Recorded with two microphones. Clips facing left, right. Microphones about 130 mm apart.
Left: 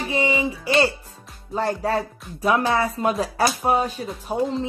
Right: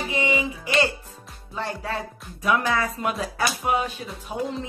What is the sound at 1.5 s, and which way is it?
Speech, 40° left (ahead or behind).